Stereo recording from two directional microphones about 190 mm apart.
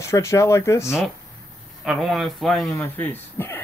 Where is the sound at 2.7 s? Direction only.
15° left (ahead or behind).